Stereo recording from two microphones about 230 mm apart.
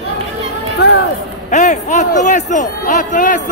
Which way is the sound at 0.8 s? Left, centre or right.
Left.